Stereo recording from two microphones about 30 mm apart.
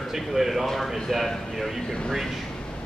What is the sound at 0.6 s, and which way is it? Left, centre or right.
A man's voice, centre.